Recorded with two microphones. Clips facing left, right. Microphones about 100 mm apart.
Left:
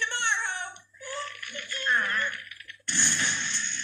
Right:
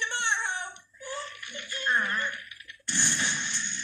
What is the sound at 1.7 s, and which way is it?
Speech, 20° right (ahead or behind).